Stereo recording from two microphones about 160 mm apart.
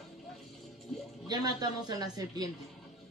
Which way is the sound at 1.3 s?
25° right (ahead or behind).